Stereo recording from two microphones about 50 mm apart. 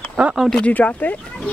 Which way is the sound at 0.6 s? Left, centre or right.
Left.